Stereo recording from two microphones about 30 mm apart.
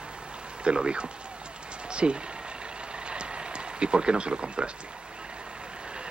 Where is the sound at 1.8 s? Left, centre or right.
Right.